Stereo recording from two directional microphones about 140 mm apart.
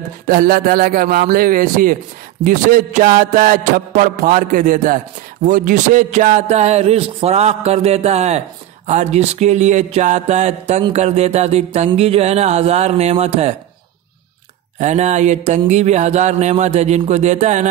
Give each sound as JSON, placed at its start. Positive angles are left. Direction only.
{"t": 0.3, "sound": "a man's voice", "side_deg": -90}
{"t": 2.4, "sound": "music", "side_deg": -80}
{"t": 8.8, "sound": "mantra", "side_deg": -55}
{"t": 14.8, "sound": "music", "side_deg": -55}